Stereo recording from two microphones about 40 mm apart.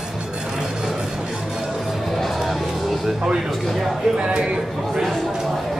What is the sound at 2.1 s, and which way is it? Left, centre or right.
Music, centre.